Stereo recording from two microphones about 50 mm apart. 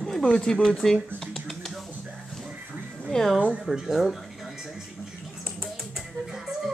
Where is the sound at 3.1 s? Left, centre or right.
Centre.